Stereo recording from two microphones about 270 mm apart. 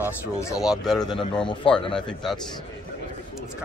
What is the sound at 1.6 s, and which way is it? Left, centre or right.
Speech, centre.